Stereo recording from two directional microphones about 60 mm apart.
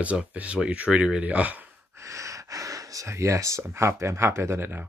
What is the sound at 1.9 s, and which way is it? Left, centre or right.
Gasp, right.